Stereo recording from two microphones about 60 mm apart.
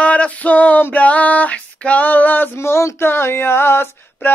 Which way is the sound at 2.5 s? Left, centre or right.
Left.